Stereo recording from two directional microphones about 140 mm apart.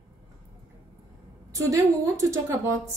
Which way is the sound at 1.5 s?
20° right (ahead or behind).